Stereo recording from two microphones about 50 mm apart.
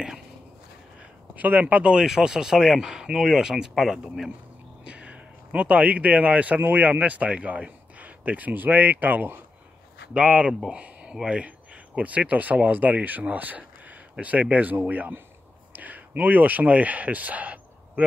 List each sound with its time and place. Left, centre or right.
1.3 s speech: right
1.9 s speech: centre
4.8 s a sound: right
6.6 s a man's voice: right
10.1 s a man's voice: right